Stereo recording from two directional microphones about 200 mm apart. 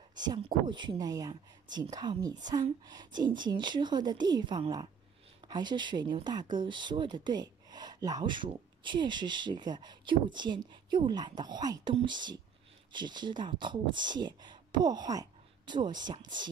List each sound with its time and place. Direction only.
0.1 s speech: 20° right (ahead or behind)